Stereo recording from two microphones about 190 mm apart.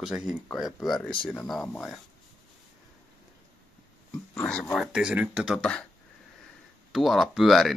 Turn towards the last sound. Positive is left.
turn(degrees=0)  # may be behind; listen again after turning